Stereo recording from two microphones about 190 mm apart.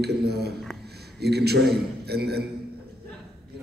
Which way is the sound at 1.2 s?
60° right (ahead or behind).